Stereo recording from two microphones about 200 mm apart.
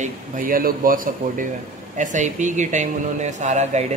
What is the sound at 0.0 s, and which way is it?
Speech, 45° right (ahead or behind).